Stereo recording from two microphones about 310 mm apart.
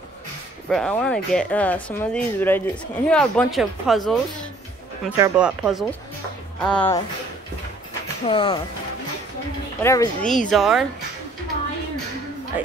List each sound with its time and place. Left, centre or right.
0.7 s speech: centre
8.3 s speech: centre
9.8 s speech: centre